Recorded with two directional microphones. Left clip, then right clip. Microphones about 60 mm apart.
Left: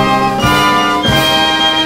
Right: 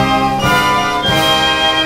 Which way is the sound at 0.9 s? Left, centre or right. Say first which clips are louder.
Left 1 dB; left.